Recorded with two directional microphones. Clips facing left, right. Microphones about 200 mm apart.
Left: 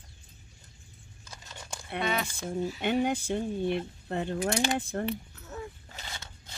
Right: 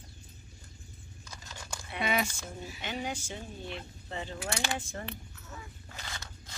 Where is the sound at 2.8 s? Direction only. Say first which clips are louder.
Left 8 dB; 55° left (ahead or behind).